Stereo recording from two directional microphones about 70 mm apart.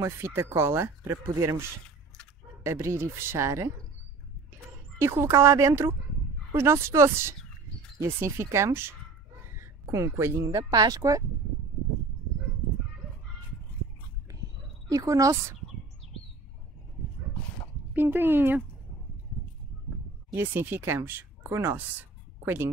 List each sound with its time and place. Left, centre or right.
0.0 s speech: right
1.1 s speech: right
2.6 s speech: right
4.9 s speech: right
9.6 s a sound: right
10.4 s speech: right
14.9 s speech: right
17.9 s speech: right
20.3 s speech: right